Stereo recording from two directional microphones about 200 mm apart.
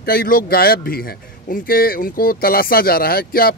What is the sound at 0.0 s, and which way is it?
Speech, 50° left (ahead or behind).